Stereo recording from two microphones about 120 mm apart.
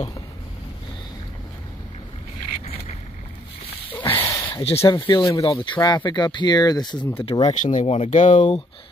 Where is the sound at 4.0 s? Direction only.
45° left (ahead or behind).